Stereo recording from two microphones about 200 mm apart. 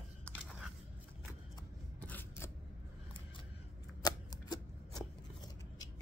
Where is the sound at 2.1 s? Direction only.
10° left (ahead or behind).